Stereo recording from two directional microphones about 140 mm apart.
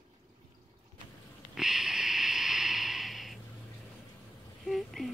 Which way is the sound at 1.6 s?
5° right (ahead or behind).